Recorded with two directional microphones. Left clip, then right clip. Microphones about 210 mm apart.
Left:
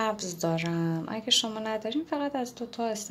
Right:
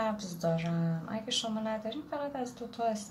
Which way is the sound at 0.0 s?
45° left (ahead or behind).